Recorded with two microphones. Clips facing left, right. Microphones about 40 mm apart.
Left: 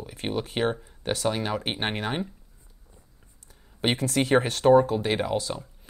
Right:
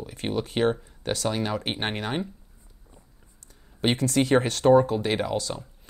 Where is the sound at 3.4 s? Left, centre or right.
Centre.